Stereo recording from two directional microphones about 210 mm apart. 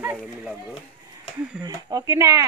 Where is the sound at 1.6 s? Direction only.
15° right (ahead or behind).